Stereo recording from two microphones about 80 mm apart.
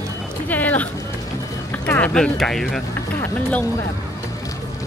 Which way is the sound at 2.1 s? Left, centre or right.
Centre.